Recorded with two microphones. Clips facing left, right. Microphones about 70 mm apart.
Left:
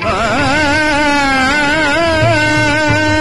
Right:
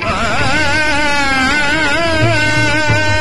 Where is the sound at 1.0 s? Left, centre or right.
Left.